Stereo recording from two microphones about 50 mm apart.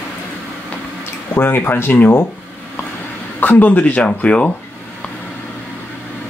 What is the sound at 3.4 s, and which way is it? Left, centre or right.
Speech, left.